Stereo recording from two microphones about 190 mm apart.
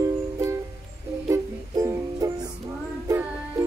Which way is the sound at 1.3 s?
15° right (ahead or behind).